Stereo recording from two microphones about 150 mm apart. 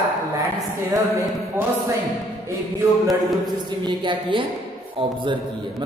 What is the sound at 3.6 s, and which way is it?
A woman's voice, 30° right (ahead or behind).